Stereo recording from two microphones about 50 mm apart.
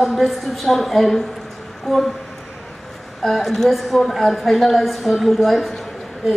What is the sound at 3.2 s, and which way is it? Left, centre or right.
A woman's voice, centre.